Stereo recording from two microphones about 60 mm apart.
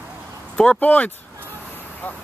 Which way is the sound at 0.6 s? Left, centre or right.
Centre.